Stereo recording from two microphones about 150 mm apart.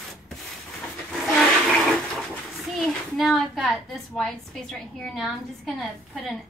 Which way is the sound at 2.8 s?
Centre (ahead or behind).